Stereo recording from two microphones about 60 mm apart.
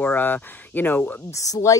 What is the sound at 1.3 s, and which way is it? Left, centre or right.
Speech, left.